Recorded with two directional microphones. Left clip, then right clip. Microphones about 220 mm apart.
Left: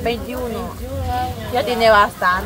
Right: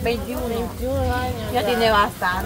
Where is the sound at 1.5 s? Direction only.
35° left (ahead or behind).